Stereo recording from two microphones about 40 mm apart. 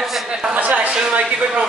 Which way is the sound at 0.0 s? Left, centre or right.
Centre.